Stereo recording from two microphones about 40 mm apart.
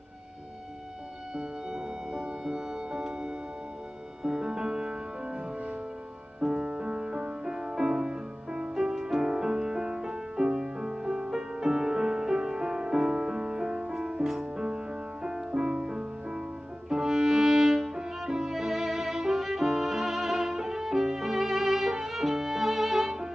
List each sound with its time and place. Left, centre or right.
1.3 s music: centre
6.4 s music: centre
22.0 s violin: centre